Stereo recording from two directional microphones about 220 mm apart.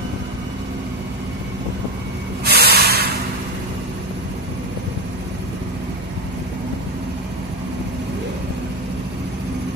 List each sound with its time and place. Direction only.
2.4 s hiss: 45° right (ahead or behind)